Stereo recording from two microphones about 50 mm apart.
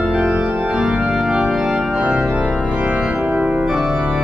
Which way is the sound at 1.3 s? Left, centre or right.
Centre.